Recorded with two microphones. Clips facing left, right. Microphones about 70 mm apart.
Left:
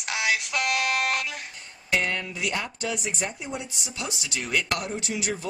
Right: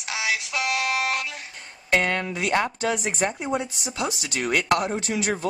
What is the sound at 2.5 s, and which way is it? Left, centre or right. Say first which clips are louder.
Speech: right 7 dB; right.